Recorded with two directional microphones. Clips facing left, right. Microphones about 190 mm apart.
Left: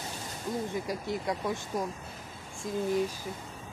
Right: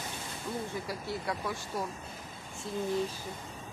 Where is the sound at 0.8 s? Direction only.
15° left (ahead or behind).